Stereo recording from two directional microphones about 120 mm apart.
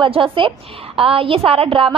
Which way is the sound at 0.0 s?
45° right (ahead or behind).